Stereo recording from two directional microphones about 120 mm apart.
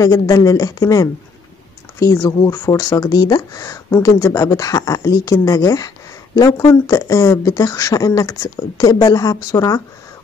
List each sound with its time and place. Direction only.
0.0 s speech: 30° left (ahead or behind)